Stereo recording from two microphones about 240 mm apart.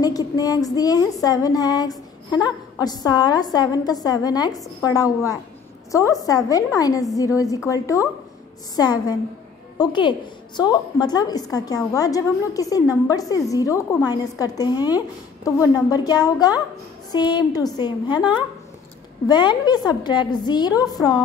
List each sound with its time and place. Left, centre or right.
0.0 s a woman's voice: centre